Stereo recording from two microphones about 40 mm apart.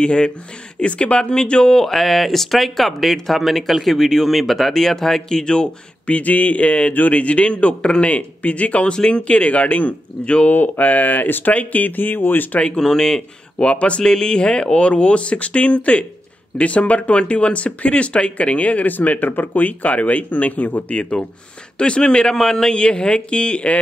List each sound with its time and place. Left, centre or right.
0.0 s speech: left
6.0 s speech: left
8.9 s speech: left
11.5 s speech: left
12.5 s speech: left
18.9 s speech: left
20.9 s speech: left; by 22.8 s centre
22.8 s speech: left